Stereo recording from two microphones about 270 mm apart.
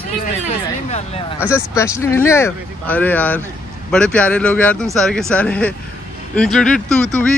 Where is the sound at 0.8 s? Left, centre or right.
Left.